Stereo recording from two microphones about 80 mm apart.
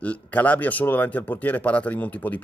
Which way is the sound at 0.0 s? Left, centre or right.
Centre.